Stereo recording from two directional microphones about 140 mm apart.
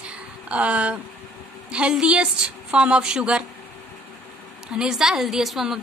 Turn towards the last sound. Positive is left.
turn(degrees=0)  # may be behind; listen again after turning